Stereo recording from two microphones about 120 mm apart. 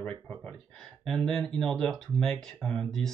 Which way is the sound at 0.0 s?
10° left (ahead or behind).